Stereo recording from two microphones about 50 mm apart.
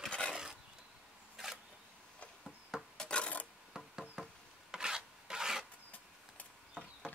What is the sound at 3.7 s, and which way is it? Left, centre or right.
Insect, centre.